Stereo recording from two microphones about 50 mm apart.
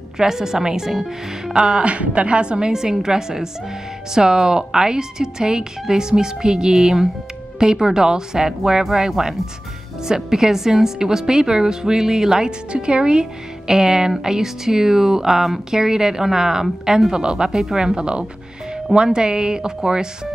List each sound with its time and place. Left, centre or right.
0.2 s a woman's voice: centre
1.8 s a woman's voice: right